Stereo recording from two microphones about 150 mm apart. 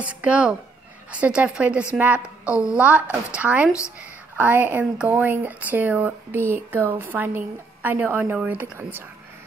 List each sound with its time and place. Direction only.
0.0 s speech: 10° right (ahead or behind)